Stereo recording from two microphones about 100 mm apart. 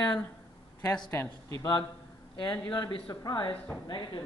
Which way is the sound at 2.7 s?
55° left (ahead or behind).